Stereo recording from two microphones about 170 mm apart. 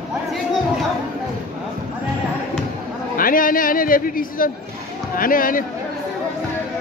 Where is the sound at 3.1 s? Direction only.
55° left (ahead or behind).